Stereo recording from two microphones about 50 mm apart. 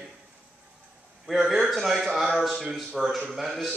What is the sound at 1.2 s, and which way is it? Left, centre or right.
A man's voice, centre.